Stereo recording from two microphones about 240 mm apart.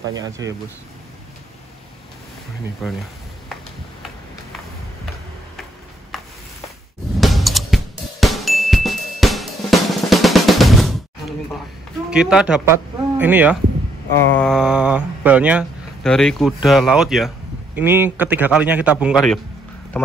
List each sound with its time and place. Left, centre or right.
0.1 s a man's voice: centre
2.8 s speech: centre
6.1 s a sound: centre
7.2 s music: centre
12.1 s a man's voice: centre